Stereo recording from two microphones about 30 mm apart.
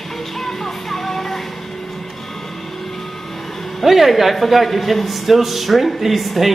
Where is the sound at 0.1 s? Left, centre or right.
Centre.